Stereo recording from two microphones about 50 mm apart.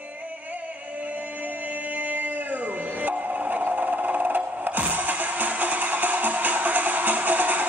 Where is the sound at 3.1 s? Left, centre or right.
Right.